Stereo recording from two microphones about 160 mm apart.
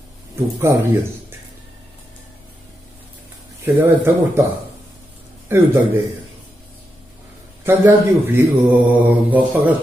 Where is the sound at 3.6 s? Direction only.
10° right (ahead or behind).